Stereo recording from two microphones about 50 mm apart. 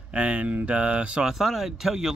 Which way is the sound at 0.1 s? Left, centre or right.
Right.